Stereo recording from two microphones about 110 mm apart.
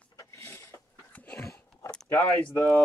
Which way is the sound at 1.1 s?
15° left (ahead or behind).